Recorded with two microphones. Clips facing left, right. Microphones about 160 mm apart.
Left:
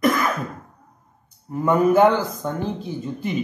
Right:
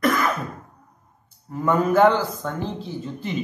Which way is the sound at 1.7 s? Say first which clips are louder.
Left 2 dB; 15° left (ahead or behind).